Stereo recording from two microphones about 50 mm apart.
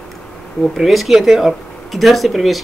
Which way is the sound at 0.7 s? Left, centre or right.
Centre.